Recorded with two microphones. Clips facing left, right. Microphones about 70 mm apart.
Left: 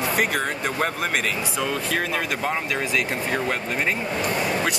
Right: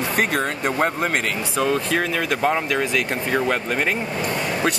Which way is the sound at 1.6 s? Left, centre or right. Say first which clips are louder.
Right 6 dB; centre.